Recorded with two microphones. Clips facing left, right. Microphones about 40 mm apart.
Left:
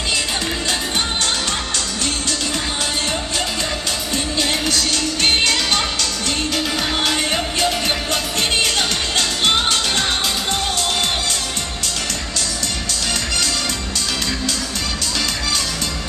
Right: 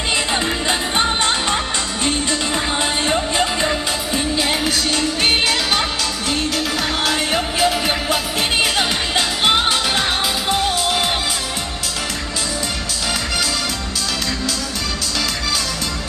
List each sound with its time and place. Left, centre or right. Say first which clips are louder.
0.7 s music: right 3 dB; right
3.1 s music: right 4 dB; centre
7.1 s music: right 1 dB; centre